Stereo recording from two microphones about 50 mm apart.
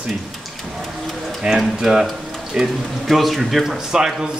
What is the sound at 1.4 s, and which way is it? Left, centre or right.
Speech, right.